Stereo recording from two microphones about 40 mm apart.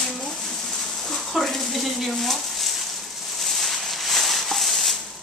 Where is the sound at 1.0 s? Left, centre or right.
Centre.